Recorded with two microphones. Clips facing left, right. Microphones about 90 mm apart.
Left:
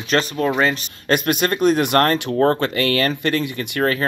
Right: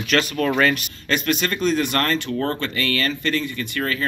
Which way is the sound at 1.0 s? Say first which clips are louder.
Left 4 dB; 50° left (ahead or behind).